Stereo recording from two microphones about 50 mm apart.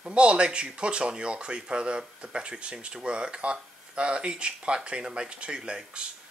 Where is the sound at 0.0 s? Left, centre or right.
Right.